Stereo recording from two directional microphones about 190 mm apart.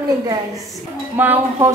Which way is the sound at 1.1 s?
10° right (ahead or behind).